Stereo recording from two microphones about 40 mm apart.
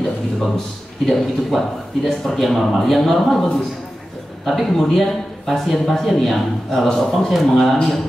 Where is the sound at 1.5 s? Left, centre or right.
Centre.